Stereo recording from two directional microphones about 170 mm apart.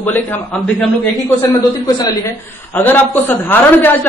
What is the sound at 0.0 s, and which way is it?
Speech, 10° left (ahead or behind).